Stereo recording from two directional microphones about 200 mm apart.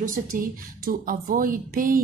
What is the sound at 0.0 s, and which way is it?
Speech, 45° right (ahead or behind).